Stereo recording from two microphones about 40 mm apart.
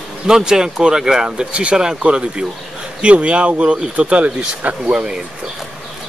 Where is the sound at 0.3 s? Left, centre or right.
Centre.